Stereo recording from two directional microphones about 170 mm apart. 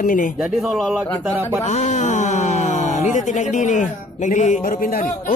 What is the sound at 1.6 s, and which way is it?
Speech, 40° left (ahead or behind).